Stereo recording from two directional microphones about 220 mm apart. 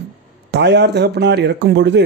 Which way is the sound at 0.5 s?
50° right (ahead or behind).